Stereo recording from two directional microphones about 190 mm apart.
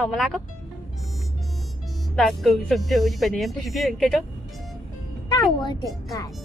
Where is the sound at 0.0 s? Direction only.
Centre (ahead or behind).